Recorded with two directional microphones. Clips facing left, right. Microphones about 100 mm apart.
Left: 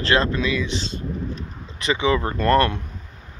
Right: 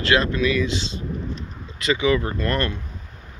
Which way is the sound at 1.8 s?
25° left (ahead or behind).